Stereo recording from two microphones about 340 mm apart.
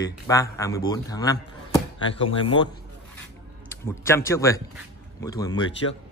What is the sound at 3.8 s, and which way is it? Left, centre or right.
Speech, centre.